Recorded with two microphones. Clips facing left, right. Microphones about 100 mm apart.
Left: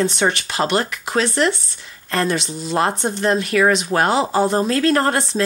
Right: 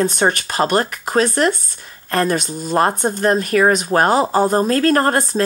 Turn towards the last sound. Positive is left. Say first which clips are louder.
# right 2 dB
turn(degrees=-45)  # may be behind; listen again after turning